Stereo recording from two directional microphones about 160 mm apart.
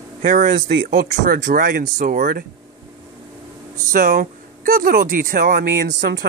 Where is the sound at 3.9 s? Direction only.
60° right (ahead or behind).